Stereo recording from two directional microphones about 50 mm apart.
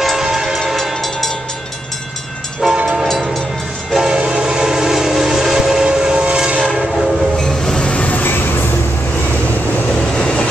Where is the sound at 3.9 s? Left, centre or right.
Centre.